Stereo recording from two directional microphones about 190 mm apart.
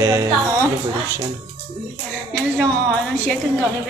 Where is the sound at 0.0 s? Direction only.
15° right (ahead or behind).